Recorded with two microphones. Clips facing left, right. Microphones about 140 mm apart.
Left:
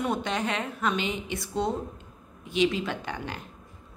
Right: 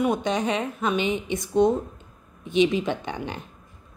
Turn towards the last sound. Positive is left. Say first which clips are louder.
# right 4 dB
turn(degrees=-20)  # may be behind; listen again after turning